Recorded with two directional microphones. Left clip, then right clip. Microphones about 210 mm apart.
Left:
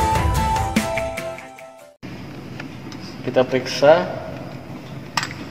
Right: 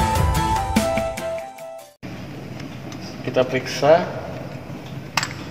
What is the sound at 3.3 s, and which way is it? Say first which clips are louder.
Speech: left 2 dB; 35° left (ahead or behind).